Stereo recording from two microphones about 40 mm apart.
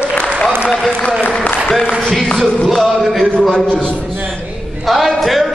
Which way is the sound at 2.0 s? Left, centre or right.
Centre.